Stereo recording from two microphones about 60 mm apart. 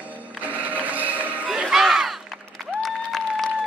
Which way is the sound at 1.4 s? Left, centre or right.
Centre.